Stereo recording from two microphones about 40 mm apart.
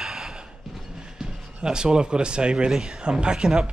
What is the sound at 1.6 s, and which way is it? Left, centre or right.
Speech, centre.